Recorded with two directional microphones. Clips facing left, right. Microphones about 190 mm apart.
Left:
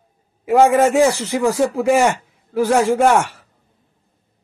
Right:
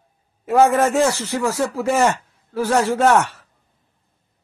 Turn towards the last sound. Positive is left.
turn(degrees=10)  # may be behind; listen again after turning